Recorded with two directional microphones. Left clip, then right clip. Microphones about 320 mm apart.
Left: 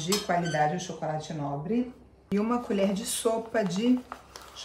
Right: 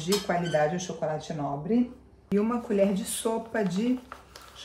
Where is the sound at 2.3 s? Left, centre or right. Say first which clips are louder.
Right 1 dB; centre.